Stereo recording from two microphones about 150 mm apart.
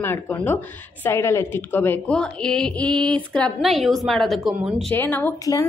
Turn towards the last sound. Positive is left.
turn(degrees=15)  # may be behind; listen again after turning